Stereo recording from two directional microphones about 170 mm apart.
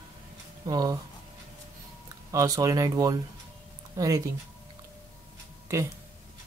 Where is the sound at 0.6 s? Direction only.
20° right (ahead or behind).